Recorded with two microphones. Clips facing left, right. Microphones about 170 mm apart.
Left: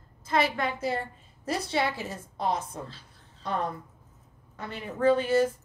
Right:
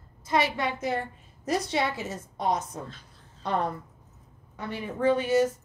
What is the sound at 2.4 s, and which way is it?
Speech, 30° left (ahead or behind).